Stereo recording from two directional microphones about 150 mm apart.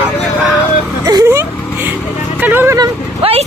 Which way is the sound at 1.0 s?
20° right (ahead or behind).